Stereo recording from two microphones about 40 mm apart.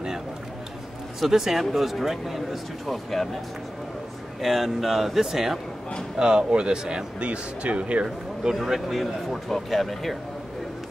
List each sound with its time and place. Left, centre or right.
1.2 s speech: centre
4.4 s speech: centre
6.1 s speech: right
8.5 s speech: centre